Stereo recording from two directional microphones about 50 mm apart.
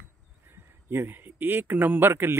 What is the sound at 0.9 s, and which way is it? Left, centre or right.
Speech, right.